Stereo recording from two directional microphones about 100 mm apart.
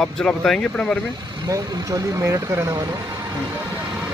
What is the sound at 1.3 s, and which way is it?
Speech, 35° right (ahead or behind).